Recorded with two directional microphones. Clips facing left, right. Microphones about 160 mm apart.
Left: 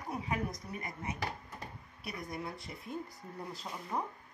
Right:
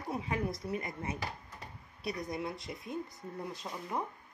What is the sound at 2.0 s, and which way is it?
Speech, 20° right (ahead or behind).